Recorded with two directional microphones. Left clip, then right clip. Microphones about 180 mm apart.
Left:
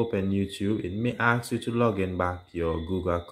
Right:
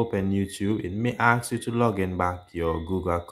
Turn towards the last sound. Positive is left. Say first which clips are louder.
# right 1 dB
turn(degrees=-10)  # may be behind; listen again after turning